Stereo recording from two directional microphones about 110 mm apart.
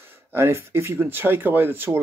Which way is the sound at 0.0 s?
20° right (ahead or behind).